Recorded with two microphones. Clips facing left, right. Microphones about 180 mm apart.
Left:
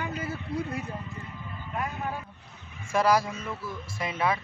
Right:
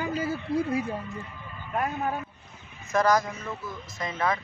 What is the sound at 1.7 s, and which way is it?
Speech, 50° right (ahead or behind).